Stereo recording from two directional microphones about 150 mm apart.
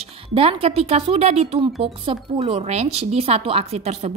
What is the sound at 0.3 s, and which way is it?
A woman's voice, 40° right (ahead or behind).